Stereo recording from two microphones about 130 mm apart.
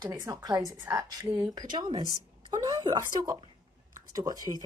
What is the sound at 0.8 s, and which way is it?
Speech, 20° right (ahead or behind).